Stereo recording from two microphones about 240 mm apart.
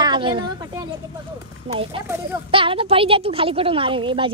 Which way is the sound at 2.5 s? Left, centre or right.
Right.